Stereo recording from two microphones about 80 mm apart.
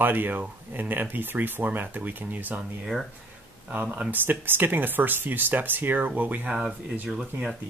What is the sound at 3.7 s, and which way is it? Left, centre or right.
Speech, centre.